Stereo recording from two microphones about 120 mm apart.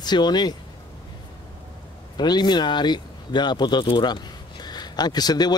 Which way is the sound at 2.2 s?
35° left (ahead or behind).